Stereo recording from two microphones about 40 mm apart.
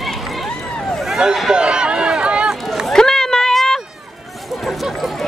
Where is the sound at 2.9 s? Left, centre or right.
Centre.